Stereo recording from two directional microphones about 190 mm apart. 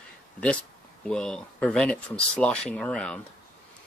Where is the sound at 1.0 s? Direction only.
5° left (ahead or behind).